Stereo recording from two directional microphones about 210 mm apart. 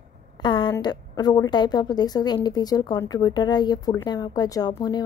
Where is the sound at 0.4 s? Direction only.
20° left (ahead or behind).